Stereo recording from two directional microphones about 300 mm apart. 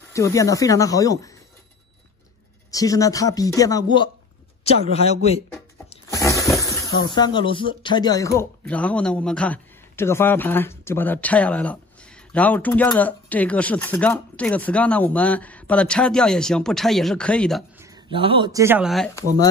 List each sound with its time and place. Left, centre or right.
0.1 s speech: centre
2.7 s a man's voice: centre
5.9 s a sound: centre
7.2 s speech: centre
17.8 s speech: centre